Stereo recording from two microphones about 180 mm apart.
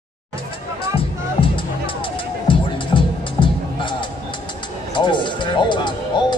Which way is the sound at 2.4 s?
25° left (ahead or behind).